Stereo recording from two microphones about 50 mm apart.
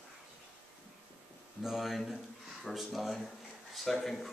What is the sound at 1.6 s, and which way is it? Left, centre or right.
Speech, centre.